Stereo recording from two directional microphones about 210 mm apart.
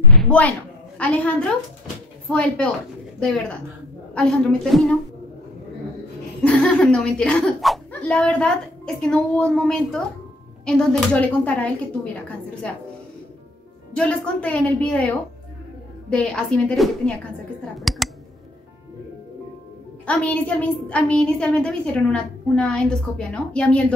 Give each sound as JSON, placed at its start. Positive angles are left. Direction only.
{"t": 0.1, "sound": "a sound", "side_deg": 5}
{"t": 0.9, "sound": "a woman's voice", "side_deg": 5}
{"t": 2.3, "sound": "a woman's voice", "side_deg": 5}
{"t": 6.4, "sound": "a woman's voice", "side_deg": 5}
{"t": 13.9, "sound": "a woman's voice", "side_deg": 5}
{"t": 17.7, "sound": "a sound", "side_deg": 0}
{"t": 20.1, "sound": "a woman's voice", "side_deg": 5}